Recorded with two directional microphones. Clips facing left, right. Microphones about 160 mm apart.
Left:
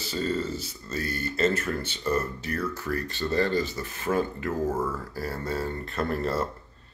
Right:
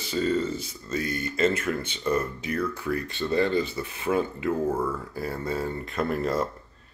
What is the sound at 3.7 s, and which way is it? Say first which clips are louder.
Speech: right 1 dB; 10° right (ahead or behind).